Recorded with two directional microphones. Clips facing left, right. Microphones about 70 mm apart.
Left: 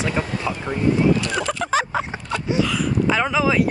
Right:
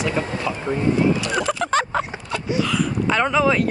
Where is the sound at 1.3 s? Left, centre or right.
Centre.